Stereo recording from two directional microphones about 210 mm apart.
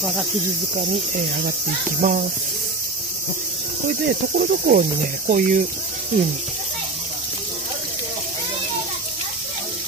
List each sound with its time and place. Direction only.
2.0 s speech: 40° right (ahead or behind)
4.4 s cricket: 45° right (ahead or behind)
5.2 s speech: 40° right (ahead or behind)